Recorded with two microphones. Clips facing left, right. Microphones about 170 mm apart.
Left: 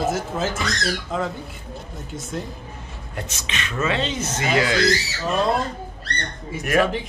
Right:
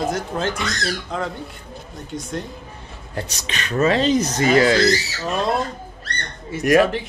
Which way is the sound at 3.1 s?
40° right (ahead or behind).